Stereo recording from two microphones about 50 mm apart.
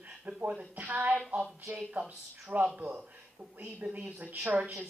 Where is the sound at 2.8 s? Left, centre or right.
Right.